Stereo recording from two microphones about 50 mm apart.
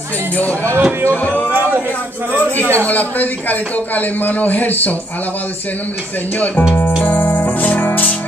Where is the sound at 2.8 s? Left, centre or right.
Left.